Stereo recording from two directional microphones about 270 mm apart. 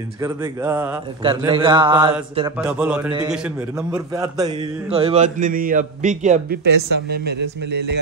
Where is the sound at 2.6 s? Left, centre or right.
Centre.